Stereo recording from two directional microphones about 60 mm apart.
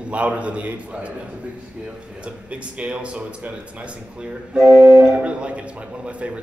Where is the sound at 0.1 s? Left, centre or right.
Right.